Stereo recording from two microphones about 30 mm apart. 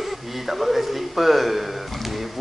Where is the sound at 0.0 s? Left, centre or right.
Centre.